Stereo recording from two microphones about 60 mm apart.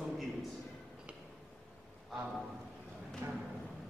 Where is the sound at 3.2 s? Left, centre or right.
Right.